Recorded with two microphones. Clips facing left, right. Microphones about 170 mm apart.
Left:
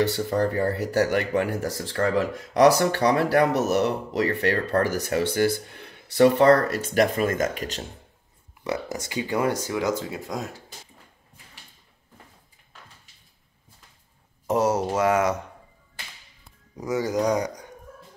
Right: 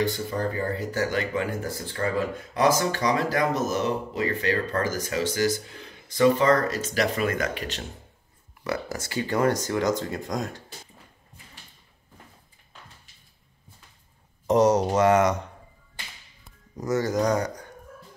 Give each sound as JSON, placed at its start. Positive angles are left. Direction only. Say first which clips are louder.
{"t": 0.0, "sound": "speech", "louder": "left 4 dB", "side_deg": 75}
{"t": 8.6, "sound": "speech", "louder": "left 1 dB", "side_deg": 20}
{"t": 14.5, "sound": "speech", "louder": "right 3 dB", "side_deg": 5}
{"t": 16.7, "sound": "speech", "louder": "even", "side_deg": 10}